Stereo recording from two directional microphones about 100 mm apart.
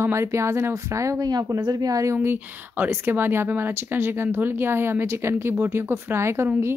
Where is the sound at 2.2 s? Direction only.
20° right (ahead or behind).